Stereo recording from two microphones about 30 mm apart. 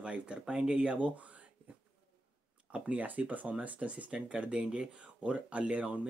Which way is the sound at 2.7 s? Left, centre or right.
Right.